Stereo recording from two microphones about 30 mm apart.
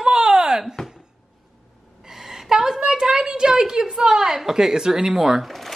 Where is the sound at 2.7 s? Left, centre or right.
Right.